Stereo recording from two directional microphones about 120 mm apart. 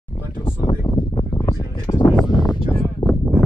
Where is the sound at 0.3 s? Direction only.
45° left (ahead or behind).